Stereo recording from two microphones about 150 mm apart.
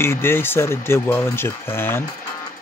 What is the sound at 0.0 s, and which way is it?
Speech, 15° left (ahead or behind).